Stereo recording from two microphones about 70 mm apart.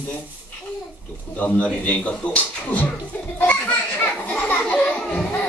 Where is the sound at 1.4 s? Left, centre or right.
Left.